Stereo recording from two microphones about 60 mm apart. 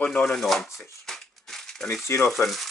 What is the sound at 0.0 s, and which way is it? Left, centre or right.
Speech, centre.